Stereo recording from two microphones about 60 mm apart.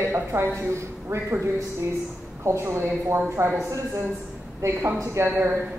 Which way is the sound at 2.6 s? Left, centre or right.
Right.